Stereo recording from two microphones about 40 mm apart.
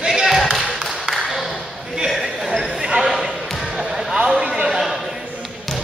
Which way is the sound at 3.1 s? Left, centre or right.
Centre.